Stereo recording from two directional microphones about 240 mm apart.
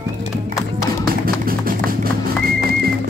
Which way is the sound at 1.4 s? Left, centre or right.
Right.